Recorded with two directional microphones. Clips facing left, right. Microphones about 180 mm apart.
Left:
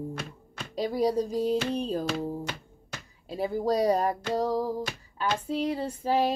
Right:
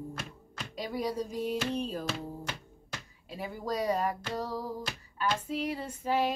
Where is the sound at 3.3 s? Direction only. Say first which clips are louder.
Left 8 dB; 35° left (ahead or behind).